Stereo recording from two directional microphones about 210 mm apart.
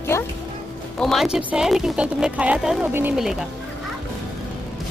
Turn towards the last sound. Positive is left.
turn(degrees=0)  # may be behind; listen again after turning